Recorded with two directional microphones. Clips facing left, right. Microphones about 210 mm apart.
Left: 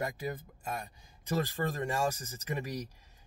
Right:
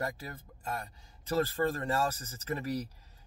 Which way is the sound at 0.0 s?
15° left (ahead or behind).